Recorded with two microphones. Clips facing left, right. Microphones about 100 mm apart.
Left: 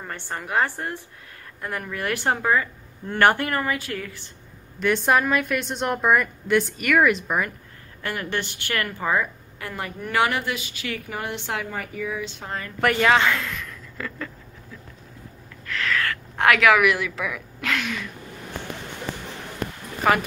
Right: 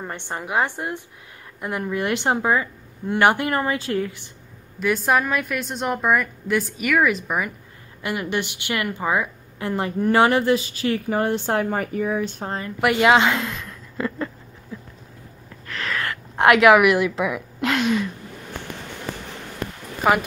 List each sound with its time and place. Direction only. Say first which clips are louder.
0.0 s a woman's voice: right 2 dB; 20° right (ahead or behind)
4.7 s a woman's voice: even; 5° right (ahead or behind)
8.0 s speech: right 3 dB; 15° right (ahead or behind)
9.6 s speech: right 9 dB; 25° right (ahead or behind); by 12.5 s 45° right (ahead or behind)
12.5 s a woman's voice: right 1 dB; 20° right (ahead or behind)
15.6 s a woman's voice: left 2 dB; 30° right (ahead or behind)
20.1 s speech: right 2 dB; 10° right (ahead or behind)